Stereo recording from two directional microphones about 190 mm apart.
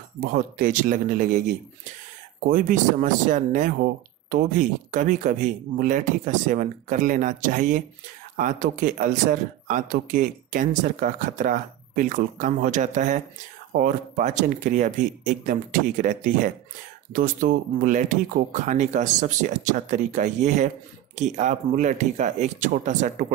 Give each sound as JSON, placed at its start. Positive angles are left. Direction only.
{"t": 0.2, "sound": "speech", "side_deg": -45}
{"t": 2.4, "sound": "speech", "side_deg": -45}